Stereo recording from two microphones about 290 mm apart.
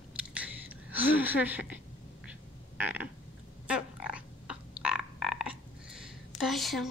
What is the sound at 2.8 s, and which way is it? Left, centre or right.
Frog, centre.